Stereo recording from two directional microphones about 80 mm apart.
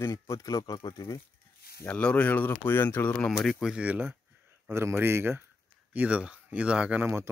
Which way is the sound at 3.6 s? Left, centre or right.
Centre.